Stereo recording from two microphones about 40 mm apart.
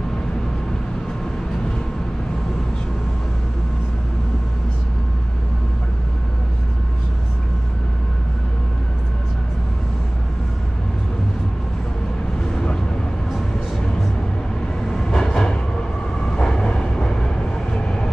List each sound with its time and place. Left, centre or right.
12.5 s vehicle: centre
15.0 s train: centre